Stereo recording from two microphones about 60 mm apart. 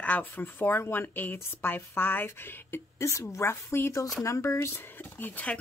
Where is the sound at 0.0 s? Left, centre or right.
Left.